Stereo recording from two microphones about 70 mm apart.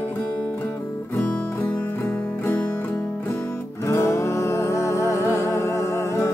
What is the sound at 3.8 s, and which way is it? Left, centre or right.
Music, left.